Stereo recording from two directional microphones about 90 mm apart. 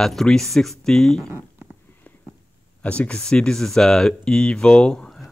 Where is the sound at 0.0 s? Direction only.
5° left (ahead or behind).